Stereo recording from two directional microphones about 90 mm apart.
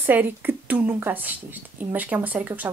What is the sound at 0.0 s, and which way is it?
Speech, 20° right (ahead or behind).